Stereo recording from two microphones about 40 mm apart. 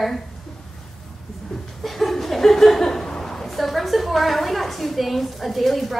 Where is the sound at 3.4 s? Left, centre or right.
Centre.